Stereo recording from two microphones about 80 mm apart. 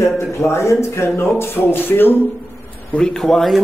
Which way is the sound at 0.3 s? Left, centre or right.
Left.